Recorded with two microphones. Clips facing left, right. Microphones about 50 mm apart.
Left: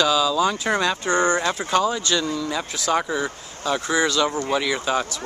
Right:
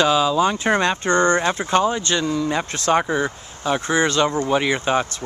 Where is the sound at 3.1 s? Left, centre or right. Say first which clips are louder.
Right 3 dB; right.